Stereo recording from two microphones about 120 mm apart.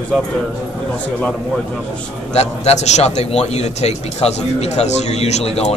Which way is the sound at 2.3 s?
65° left (ahead or behind).